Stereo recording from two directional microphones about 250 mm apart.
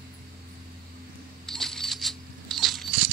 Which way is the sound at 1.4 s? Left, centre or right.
Centre.